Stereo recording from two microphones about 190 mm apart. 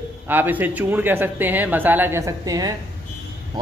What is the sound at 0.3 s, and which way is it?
Speech, 10° right (ahead or behind).